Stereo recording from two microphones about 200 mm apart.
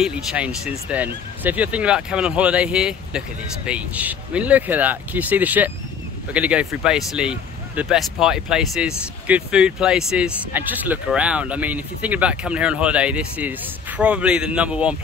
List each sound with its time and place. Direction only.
0.0 s speech: 5° right (ahead or behind)